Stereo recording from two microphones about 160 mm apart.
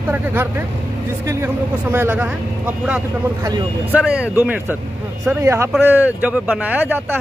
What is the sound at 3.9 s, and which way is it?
Speech, 5° right (ahead or behind).